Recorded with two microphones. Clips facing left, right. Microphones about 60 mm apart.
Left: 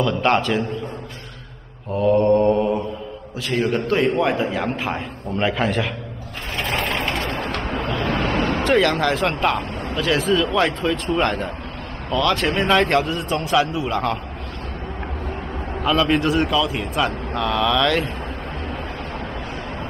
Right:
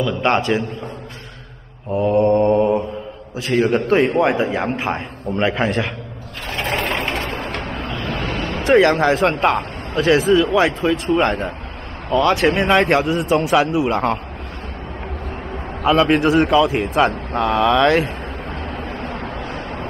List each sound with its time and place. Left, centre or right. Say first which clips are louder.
0.0 s a man's voice: even; centre
2.0 s mantra: right 1 dB; centre
3.5 s a man's voice: right 4 dB; centre
8.0 s vehicle: left 4 dB; left
8.6 s a man's voice: right 6 dB; centre
12.1 s a man's voice: right 4 dB; right
15.9 s a man's voice: right 4 dB; right